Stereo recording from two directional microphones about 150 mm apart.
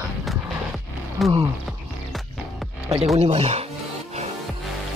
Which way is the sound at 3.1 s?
45° right (ahead or behind).